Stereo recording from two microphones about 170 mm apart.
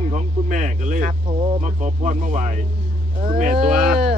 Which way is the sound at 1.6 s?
45° right (ahead or behind).